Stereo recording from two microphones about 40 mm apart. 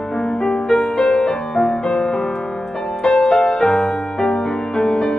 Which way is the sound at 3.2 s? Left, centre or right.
Centre.